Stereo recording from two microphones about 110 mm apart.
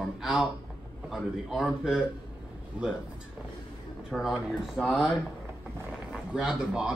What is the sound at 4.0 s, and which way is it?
Speech, 5° right (ahead or behind).